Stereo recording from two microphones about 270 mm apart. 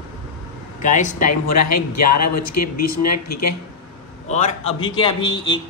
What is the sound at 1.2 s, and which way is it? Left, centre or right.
Speech, left.